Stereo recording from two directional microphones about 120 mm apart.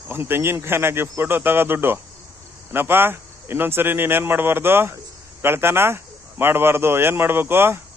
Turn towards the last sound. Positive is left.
turn(degrees=-20)  # may be behind; listen again after turning